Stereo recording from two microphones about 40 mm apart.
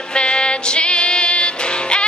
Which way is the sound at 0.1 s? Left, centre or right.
Left.